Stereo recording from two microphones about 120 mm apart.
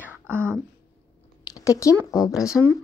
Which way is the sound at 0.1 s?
15° right (ahead or behind).